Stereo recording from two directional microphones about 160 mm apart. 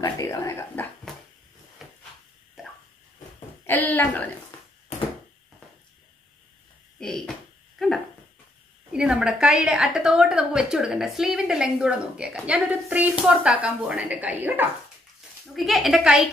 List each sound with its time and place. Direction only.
0.0 s speech: 20° left (ahead or behind)
1.1 s dog: centre (ahead or behind)
1.8 s a sound: 5° right (ahead or behind)
3.6 s speech: 15° left (ahead or behind)
7.0 s speech: 5° left (ahead or behind)
7.8 s a sound: centre (ahead or behind)
8.9 s a woman's voice: 5° right (ahead or behind)
15.4 s a woman's voice: centre (ahead or behind)